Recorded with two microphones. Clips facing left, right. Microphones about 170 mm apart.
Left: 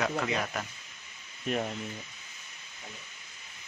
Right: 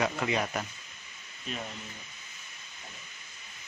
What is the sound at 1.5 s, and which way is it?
Speech, 60° left (ahead or behind).